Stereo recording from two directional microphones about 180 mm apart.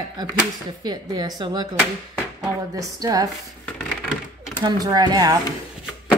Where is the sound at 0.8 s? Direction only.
25° right (ahead or behind).